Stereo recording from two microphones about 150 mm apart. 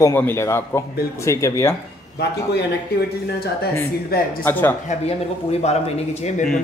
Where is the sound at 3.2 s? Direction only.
90° left.